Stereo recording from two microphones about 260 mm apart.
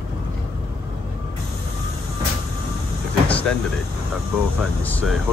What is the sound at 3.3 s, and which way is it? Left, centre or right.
Vehicle, centre.